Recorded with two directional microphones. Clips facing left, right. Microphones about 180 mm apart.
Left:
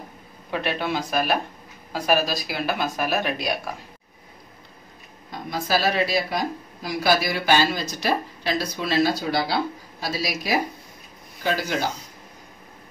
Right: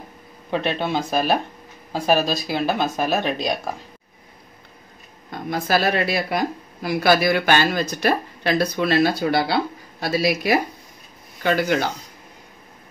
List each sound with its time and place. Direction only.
0.5 s speech: 25° right (ahead or behind)
5.3 s speech: 55° right (ahead or behind)